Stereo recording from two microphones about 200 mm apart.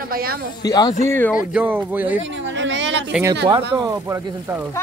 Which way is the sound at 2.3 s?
65° right (ahead or behind).